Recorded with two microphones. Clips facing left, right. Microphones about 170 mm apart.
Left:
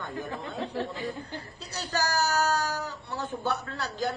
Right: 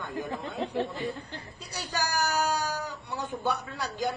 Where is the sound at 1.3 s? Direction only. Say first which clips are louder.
Left 2 dB; 15° right (ahead or behind).